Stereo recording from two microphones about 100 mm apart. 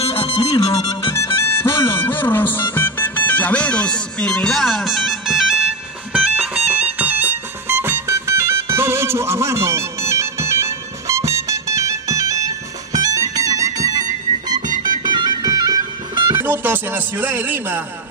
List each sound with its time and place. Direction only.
0.0 s music: 70° left (ahead or behind)
1.1 s music: 25° left (ahead or behind)
1.9 s speech: 20° left (ahead or behind); by 5.7 s 5° right (ahead or behind)
6.7 s music: 15° right (ahead or behind); by 16.3 s 45° right (ahead or behind)
16.3 s speech: 20° right (ahead or behind)